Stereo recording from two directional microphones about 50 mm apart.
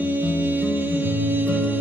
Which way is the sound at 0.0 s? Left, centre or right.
Right.